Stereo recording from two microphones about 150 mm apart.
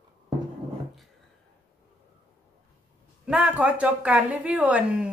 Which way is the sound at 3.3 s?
10° right (ahead or behind).